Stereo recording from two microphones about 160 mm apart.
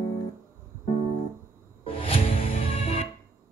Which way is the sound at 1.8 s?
35° left (ahead or behind).